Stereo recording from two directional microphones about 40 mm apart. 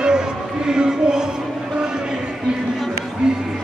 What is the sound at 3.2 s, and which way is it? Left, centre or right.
Music, right.